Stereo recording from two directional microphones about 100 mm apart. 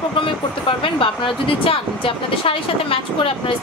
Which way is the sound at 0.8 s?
60° left (ahead or behind).